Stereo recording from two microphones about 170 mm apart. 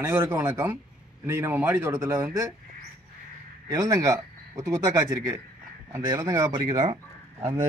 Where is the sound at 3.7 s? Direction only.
20° right (ahead or behind).